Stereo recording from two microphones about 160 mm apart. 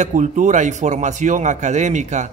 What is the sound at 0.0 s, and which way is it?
Speech, 50° right (ahead or behind).